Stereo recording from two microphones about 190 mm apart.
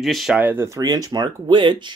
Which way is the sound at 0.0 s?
Centre (ahead or behind).